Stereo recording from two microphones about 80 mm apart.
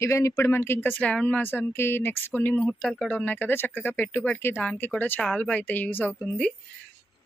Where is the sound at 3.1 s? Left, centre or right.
Left.